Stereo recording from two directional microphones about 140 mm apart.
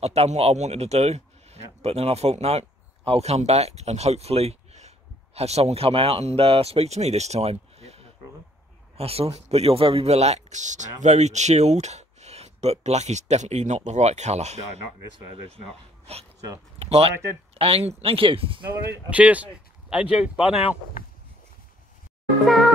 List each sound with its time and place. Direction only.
0.0 s speech: 50° right (ahead or behind)
16.7 s speech: 45° right (ahead or behind)
19.0 s speech: 10° right (ahead or behind)
21.0 s a sound: 90° left